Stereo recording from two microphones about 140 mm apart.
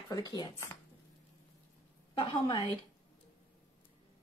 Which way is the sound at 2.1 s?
30° left (ahead or behind).